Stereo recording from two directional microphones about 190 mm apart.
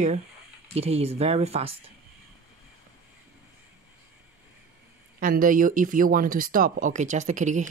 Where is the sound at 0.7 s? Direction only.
35° right (ahead or behind).